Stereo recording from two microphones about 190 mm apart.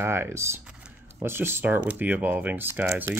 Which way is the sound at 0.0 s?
15° right (ahead or behind).